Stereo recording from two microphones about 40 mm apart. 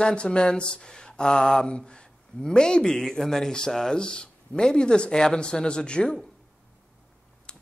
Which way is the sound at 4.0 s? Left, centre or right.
Left.